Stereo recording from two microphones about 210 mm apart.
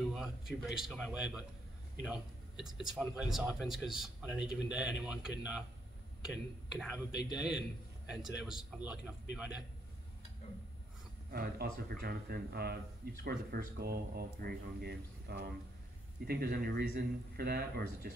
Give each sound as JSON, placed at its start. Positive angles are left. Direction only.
{"t": 0.1, "sound": "a man's voice", "side_deg": 0}
{"t": 6.7, "sound": "a man's voice", "side_deg": 0}
{"t": 11.3, "sound": "a man's voice", "side_deg": -45}